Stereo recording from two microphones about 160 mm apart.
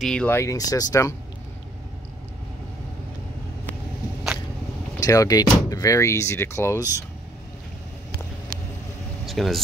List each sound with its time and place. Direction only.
0.0 s speech: 5° left (ahead or behind); by 1.1 s 20° left (ahead or behind)
5.0 s speech: 20° left (ahead or behind)
9.2 s a sound: centre (ahead or behind)